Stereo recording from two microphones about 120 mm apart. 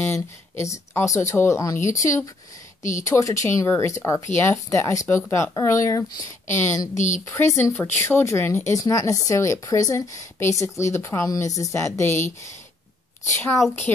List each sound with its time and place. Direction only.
0.0 s speech: 25° left (ahead or behind)